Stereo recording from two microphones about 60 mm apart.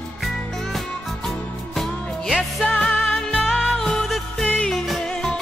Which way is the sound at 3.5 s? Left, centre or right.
Centre.